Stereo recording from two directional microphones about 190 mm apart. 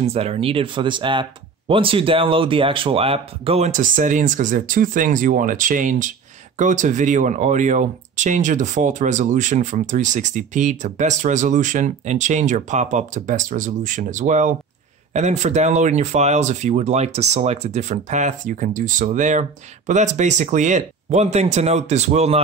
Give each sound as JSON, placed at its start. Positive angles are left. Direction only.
{"t": 0.0, "sound": "speech", "side_deg": -30}